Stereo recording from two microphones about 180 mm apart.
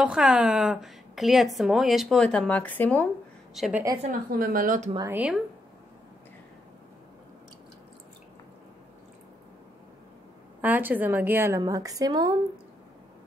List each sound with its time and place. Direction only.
0.0 s a woman's voice: 5° right (ahead or behind)
3.5 s a woman's voice: centre (ahead or behind)
4.3 s speech: 55° right (ahead or behind)
5.1 s a woman's voice: 5° right (ahead or behind)
10.6 s a woman's voice: 10° right (ahead or behind)